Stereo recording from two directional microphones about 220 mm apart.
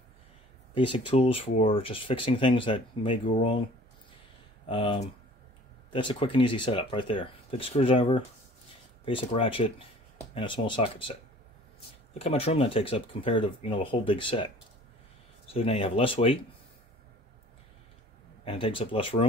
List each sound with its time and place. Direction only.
0.7 s speech: 20° left (ahead or behind)
4.6 s speech: 25° left (ahead or behind)
18.4 s speech: 25° left (ahead or behind)